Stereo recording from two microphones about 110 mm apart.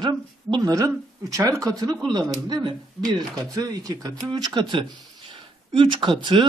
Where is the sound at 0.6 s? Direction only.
30° right (ahead or behind).